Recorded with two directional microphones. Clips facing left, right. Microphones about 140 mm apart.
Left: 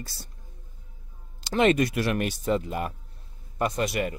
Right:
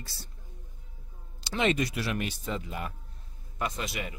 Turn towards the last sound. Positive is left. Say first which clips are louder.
# left 9 dB
turn(degrees=50)  # may be behind; listen again after turning